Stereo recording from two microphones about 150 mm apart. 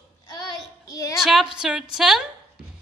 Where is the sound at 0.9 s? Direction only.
20° left (ahead or behind).